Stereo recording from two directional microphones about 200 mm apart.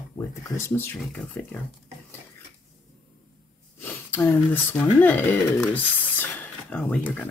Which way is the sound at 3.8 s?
10° left (ahead or behind).